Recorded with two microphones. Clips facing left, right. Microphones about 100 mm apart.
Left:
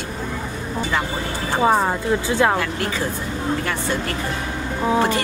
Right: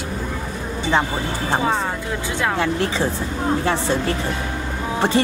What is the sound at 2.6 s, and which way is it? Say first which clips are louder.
Speech: right 3 dB; 25° right (ahead or behind).